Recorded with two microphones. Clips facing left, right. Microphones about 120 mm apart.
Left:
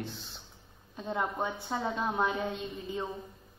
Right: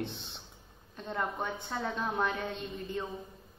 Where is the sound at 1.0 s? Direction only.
10° left (ahead or behind).